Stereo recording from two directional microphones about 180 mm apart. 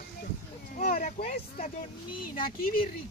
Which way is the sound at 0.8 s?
55° left (ahead or behind).